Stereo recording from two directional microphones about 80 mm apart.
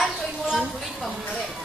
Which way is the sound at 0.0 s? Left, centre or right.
Centre.